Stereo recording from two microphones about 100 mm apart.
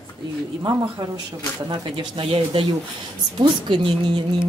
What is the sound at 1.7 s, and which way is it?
Speech, 60° right (ahead or behind).